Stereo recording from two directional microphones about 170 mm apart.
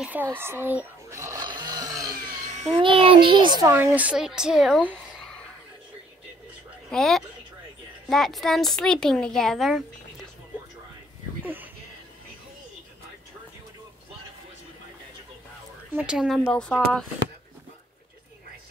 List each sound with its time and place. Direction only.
0.0 s a sound: 10° right (ahead or behind)
2.7 s a child's voice: 30° right (ahead or behind)
3.7 s speech: 10° right (ahead or behind)
6.9 s a woman's voice: centre (ahead or behind)
11.4 s a sound: 10° right (ahead or behind)
15.9 s a woman's voice: 10° right (ahead or behind)